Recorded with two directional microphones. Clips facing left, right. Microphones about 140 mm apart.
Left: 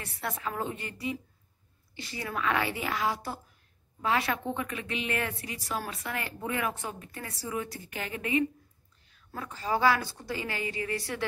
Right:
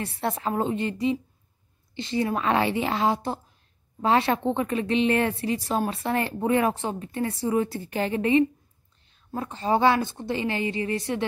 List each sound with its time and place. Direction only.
0.0 s a woman's voice: 30° right (ahead or behind)